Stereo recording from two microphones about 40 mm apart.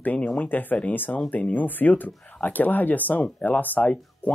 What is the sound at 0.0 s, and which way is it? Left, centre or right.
Speech, left.